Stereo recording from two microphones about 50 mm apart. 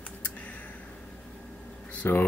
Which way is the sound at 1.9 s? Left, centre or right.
Left.